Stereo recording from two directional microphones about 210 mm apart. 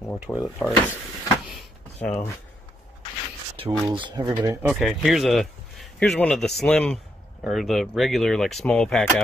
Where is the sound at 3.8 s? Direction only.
20° right (ahead or behind).